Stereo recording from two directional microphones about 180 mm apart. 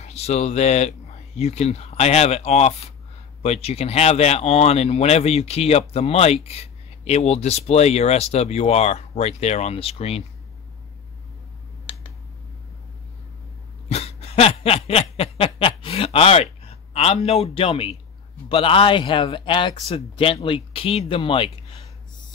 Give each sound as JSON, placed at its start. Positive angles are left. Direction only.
{"t": 0.0, "sound": "speech", "side_deg": 35}
{"t": 13.8, "sound": "snicker", "side_deg": 35}
{"t": 16.9, "sound": "speech", "side_deg": 35}